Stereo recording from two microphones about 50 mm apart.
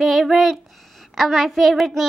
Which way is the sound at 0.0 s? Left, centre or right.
Centre.